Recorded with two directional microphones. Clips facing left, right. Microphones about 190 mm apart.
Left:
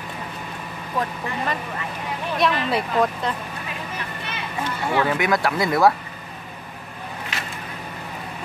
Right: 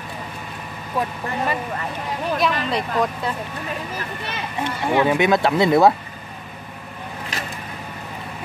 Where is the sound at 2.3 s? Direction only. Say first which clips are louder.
Left 1 dB; centre (ahead or behind).